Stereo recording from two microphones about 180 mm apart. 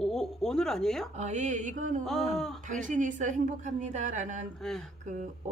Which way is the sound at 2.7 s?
45° right (ahead or behind).